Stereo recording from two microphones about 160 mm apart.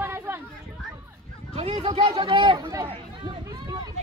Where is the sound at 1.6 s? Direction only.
40° right (ahead or behind).